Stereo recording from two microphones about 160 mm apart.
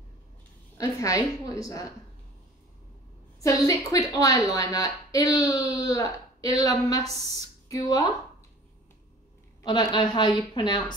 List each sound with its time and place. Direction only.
0.7 s speech: 20° left (ahead or behind)
3.4 s speech: 20° left (ahead or behind)
9.6 s speech: 25° left (ahead or behind)